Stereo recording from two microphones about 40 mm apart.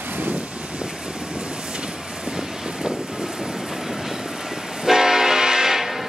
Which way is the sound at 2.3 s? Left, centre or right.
Centre.